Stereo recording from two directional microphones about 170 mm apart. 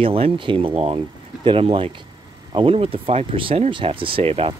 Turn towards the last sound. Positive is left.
turn(degrees=-35)  # may be behind; listen again after turning